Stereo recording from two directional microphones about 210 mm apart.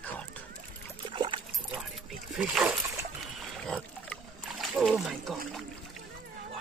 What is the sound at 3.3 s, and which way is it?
Splash, centre (ahead or behind).